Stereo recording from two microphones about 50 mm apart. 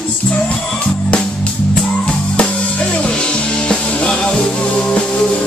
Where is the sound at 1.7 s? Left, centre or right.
Centre.